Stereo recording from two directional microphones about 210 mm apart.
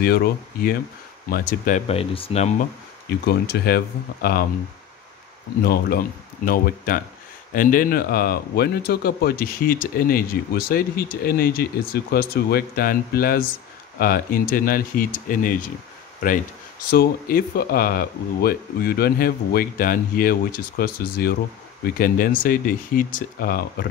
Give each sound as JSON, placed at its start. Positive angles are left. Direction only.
{"t": 0.0, "sound": "speech", "side_deg": 45}
{"t": 1.9, "sound": "speech", "side_deg": 25}
{"t": 3.3, "sound": "speech", "side_deg": 50}
{"t": 5.7, "sound": "speech", "side_deg": 45}
{"t": 16.9, "sound": "speech", "side_deg": 45}